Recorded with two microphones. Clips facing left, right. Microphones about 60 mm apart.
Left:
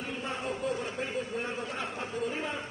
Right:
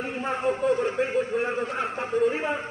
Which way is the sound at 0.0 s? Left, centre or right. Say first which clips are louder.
Right 9 dB; right.